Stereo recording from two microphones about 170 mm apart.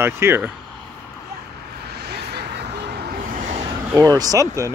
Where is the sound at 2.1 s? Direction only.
75° right (ahead or behind).